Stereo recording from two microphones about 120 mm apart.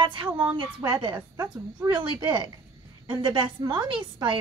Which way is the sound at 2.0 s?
35° right (ahead or behind).